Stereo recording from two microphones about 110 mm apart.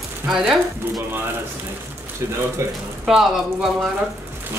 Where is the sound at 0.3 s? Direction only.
5° right (ahead or behind).